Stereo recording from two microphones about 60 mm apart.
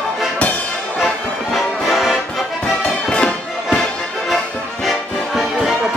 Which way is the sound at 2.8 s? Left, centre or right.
Centre.